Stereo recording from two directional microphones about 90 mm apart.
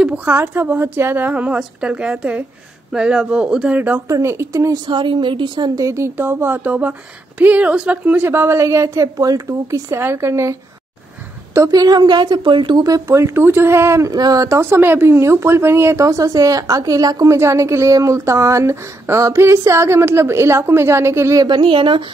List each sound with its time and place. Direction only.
0.0 s a woman's voice: 15° right (ahead or behind)
4.1 s speech: 30° right (ahead or behind)
4.8 s a woman's voice: 60° right (ahead or behind)
5.8 s speech: 35° right (ahead or behind)
11.5 s a woman's voice: 40° right (ahead or behind); by 12.8 s 60° right (ahead or behind)
12.8 s speech: 35° right (ahead or behind)
14.1 s speech: 45° right (ahead or behind)
17.4 s speech: 30° right (ahead or behind)
21.5 s a woman's voice: 70° right (ahead or behind)